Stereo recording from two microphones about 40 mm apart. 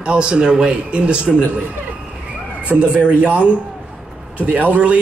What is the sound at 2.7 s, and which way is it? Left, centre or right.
Speech, right.